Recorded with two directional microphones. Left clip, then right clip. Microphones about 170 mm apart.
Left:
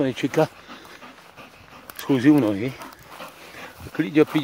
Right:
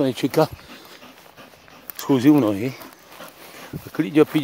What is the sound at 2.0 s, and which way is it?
Speech, 25° right (ahead or behind).